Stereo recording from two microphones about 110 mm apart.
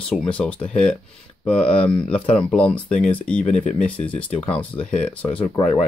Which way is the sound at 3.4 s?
90° left.